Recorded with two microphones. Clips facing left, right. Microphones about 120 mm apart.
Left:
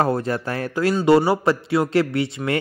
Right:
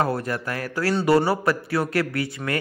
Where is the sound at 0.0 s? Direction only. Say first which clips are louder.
Left 3 dB; 30° left (ahead or behind).